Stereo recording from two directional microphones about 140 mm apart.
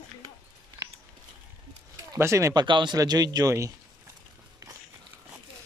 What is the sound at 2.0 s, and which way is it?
Speech, 20° right (ahead or behind).